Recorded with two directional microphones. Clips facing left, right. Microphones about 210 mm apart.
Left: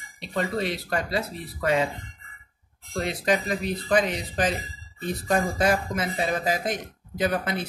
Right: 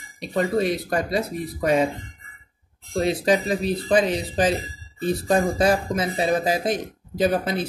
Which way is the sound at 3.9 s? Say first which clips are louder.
Right 3 dB; 25° right (ahead or behind).